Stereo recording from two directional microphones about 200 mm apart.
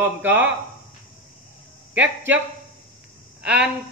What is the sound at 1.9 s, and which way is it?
Speech, 10° right (ahead or behind).